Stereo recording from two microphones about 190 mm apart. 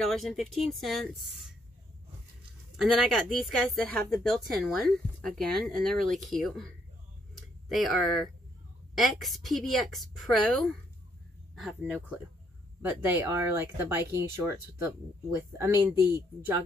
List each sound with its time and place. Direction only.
0.0 s speech: centre (ahead or behind)
2.8 s speech: centre (ahead or behind)
16.0 s a woman's voice: 20° left (ahead or behind)